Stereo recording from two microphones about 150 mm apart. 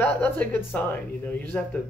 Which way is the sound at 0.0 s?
10° left (ahead or behind).